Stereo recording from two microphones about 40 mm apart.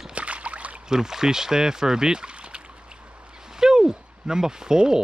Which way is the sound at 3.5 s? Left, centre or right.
Centre.